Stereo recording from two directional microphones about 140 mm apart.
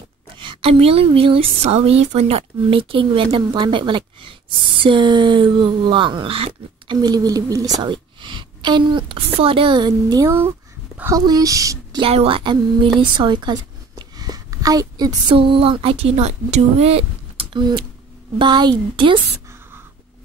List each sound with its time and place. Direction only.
0.4 s a woman's voice: 40° right (ahead or behind)
7.0 s a woman's voice: 25° right (ahead or behind)
12.0 s a woman's voice: 45° right (ahead or behind)